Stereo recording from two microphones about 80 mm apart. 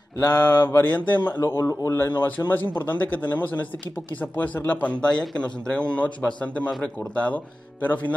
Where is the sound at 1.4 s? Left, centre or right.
Left.